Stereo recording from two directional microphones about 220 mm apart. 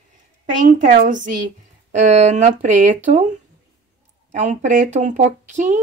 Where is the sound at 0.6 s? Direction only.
40° right (ahead or behind).